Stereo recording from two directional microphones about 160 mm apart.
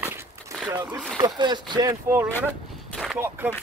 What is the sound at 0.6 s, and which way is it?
Speech, 25° right (ahead or behind).